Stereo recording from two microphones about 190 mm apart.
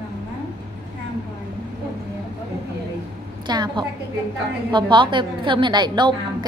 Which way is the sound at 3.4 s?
25° right (ahead or behind).